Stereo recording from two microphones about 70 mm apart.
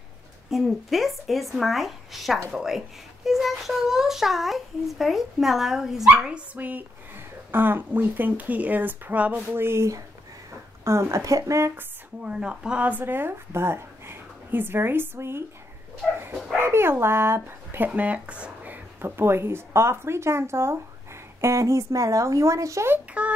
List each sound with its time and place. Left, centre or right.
0.5 s a child's voice: centre
9.5 s speech: right
12.2 s speech: centre; by 15.4 s right
16.0 s dog: centre
16.5 s speech: right
23.2 s a child's voice: centre